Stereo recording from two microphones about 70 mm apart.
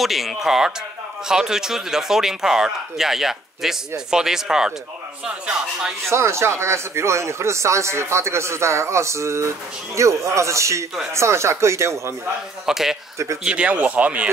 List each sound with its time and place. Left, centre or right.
0.0 s a man's voice: centre
6.0 s speech: right
12.6 s a man's voice: centre